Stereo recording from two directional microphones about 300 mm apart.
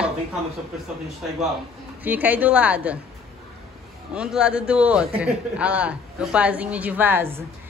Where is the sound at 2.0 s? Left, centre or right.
Centre.